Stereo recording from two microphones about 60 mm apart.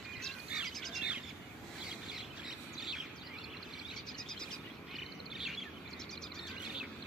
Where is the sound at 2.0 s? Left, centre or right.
Centre.